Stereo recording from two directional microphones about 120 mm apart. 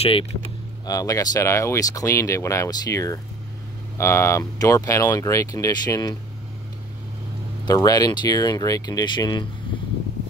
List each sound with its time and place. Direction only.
0.0 s speech: 50° left (ahead or behind)
0.8 s speech: 30° left (ahead or behind)
7.6 s speech: 30° left (ahead or behind)